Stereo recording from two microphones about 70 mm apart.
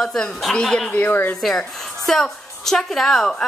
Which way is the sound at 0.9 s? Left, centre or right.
Left.